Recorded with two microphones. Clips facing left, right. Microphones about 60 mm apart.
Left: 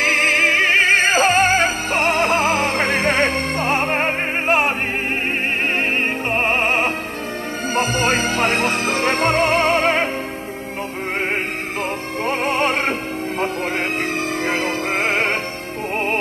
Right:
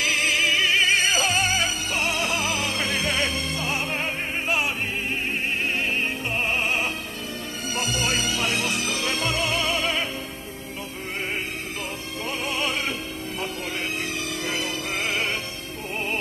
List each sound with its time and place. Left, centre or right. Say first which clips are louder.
0.0 s music: left 7 dB; left
5.8 s music: left 6 dB; left
12.3 s music: left 9 dB; left
14.4 s music: left 8 dB; left